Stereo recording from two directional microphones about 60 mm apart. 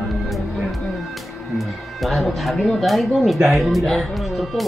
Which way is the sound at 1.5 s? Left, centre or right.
Centre.